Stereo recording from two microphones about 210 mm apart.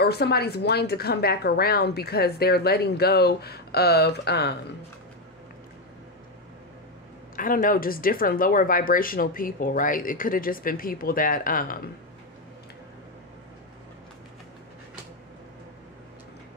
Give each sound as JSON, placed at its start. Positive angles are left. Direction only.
{"t": 0.0, "sound": "speech", "side_deg": 50}
{"t": 7.3, "sound": "speech", "side_deg": 40}